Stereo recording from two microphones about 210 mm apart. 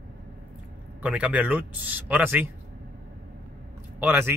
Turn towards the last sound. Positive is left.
turn(degrees=-10)  # may be behind; listen again after turning